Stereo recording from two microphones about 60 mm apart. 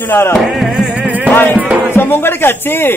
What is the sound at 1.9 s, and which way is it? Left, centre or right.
Speech, left.